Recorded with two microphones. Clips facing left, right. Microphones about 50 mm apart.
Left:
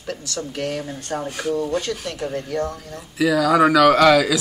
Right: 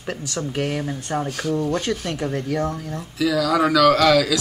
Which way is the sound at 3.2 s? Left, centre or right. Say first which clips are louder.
Left 3 dB; left.